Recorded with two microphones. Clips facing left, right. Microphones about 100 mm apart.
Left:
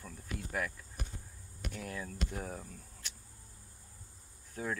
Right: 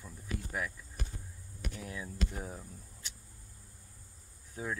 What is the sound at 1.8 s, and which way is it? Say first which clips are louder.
Speech: even; 5° right (ahead or behind).